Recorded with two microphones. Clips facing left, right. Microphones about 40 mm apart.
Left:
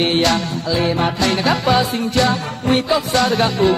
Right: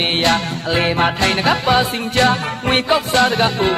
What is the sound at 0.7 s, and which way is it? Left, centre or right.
Music, right.